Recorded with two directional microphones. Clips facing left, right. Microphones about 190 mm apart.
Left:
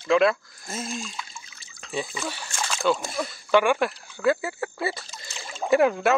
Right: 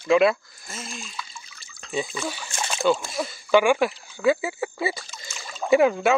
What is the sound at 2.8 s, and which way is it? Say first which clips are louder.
Speech: right 2 dB; centre (ahead or behind).